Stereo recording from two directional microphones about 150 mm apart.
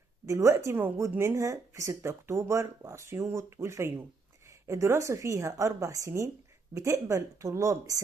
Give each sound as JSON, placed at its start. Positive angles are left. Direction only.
{"t": 0.3, "sound": "speech", "side_deg": -20}